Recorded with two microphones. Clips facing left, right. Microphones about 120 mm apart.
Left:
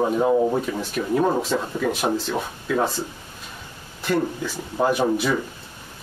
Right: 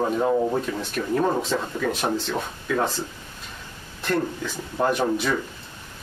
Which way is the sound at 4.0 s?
5° left (ahead or behind).